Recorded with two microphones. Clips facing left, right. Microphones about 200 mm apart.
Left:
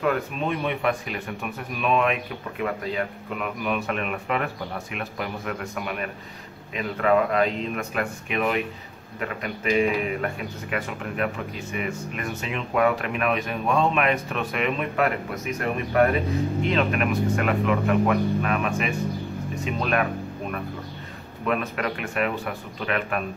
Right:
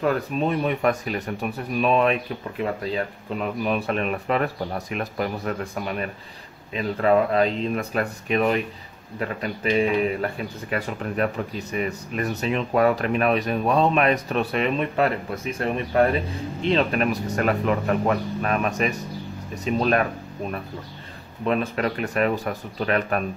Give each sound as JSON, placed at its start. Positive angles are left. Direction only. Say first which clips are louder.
{"t": 0.0, "sound": "speech", "louder": "right 2 dB", "side_deg": -40}
{"t": 21.5, "sound": "speech", "louder": "right 3 dB", "side_deg": -30}